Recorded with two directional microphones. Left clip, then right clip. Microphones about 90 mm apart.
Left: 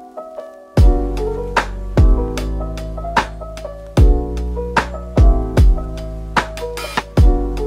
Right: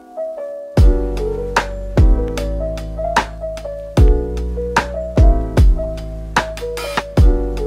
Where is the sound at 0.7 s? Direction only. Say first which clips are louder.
Left 1 dB; centre (ahead or behind).